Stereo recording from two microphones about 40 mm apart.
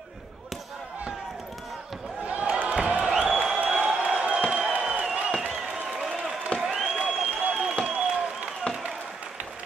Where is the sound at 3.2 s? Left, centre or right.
Centre.